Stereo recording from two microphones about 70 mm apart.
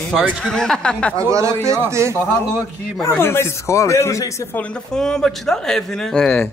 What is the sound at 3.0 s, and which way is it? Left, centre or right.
Speech, left.